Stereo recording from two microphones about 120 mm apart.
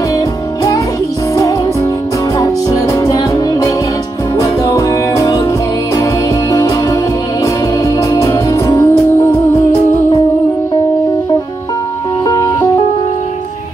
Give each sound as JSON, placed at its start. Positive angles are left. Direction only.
{"t": 2.3, "sound": "music", "side_deg": 30}
{"t": 7.8, "sound": "music", "side_deg": 25}